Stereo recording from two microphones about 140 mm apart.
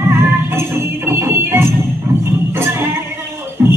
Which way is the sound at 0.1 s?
15° right (ahead or behind).